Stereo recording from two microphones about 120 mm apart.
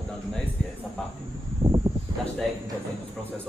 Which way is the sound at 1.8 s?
40° right (ahead or behind).